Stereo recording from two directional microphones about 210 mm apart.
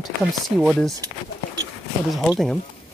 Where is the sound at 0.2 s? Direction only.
Centre (ahead or behind).